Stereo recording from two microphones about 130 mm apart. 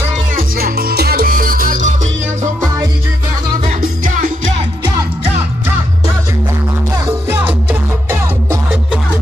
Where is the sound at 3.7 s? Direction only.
75° right (ahead or behind).